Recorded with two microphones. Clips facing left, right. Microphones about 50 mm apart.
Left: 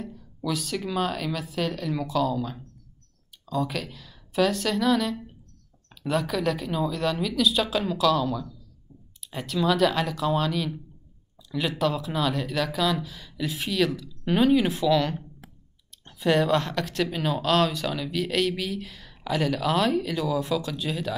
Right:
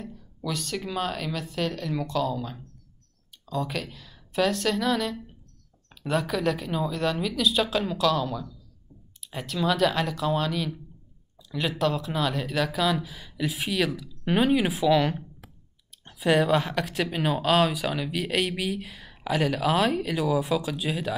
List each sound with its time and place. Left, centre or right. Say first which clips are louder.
0.0 s a woman's voice: left 2 dB; centre
11.8 s speech: even; centre